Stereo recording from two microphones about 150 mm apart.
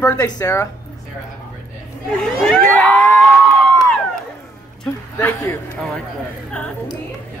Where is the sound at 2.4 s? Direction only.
5° left (ahead or behind).